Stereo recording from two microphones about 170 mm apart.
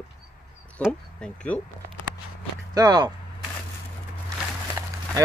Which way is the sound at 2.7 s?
25° right (ahead or behind).